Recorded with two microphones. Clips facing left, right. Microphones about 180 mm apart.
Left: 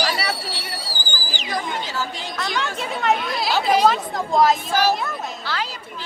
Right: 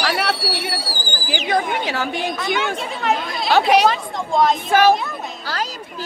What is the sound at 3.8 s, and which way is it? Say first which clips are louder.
Speech: even; centre (ahead or behind).